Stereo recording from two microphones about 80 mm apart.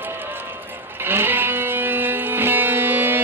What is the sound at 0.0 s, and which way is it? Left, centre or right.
Music, right.